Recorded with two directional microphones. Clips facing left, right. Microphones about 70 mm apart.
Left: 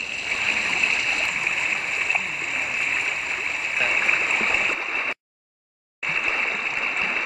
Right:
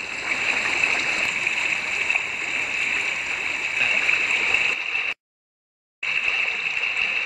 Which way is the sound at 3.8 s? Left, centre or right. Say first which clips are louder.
Left 1 dB; left.